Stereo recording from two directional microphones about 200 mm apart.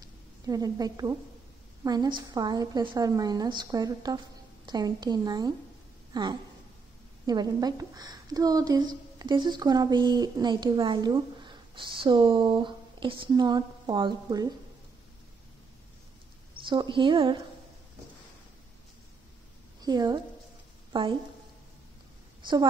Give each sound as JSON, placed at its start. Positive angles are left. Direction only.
{"t": 0.0, "sound": "a sound", "side_deg": -20}
{"t": 1.9, "sound": "a woman's voice", "side_deg": -20}
{"t": 16.6, "sound": "a woman's voice", "side_deg": -25}
{"t": 19.8, "sound": "a woman's voice", "side_deg": -20}